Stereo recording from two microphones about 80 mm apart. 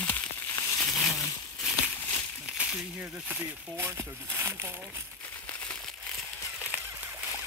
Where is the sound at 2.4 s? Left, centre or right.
Centre.